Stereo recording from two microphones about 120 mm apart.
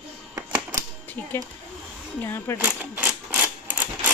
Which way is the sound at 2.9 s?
15° right (ahead or behind).